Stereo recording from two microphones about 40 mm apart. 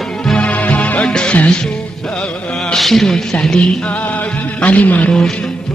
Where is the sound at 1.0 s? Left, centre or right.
Left.